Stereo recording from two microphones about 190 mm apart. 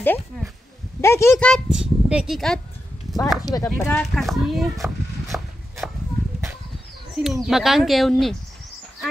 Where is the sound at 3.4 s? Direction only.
20° left (ahead or behind).